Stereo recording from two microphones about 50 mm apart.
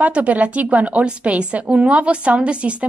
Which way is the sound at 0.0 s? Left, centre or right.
Right.